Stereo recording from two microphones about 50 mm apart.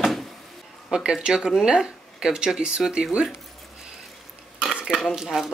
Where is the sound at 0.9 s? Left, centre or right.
Centre.